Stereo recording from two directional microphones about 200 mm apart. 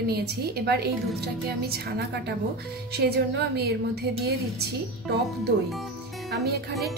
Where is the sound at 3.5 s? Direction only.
55° right (ahead or behind).